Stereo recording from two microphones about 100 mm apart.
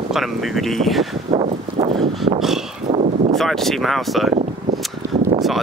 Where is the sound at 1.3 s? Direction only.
90° right.